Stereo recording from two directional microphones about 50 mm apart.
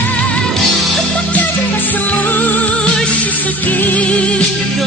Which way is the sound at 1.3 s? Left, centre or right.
Left.